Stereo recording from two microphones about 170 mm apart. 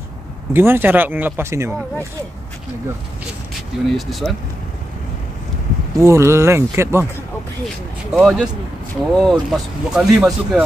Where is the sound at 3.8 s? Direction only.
Centre (ahead or behind).